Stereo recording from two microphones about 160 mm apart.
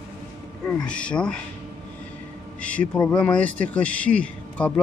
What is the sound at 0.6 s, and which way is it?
Speech, 5° left (ahead or behind).